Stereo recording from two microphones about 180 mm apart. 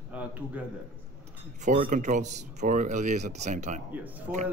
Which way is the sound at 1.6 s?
45° right (ahead or behind).